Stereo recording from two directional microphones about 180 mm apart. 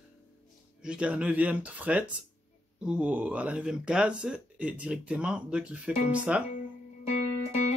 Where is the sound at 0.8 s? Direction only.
5° right (ahead or behind).